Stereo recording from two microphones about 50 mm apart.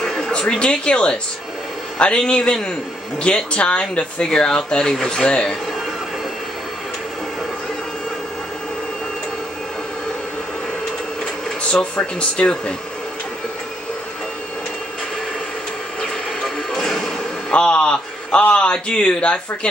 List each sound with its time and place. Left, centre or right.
0.0 s a man's voice: centre
11.7 s a man's voice: left
16.4 s music: centre
17.5 s a man's voice: left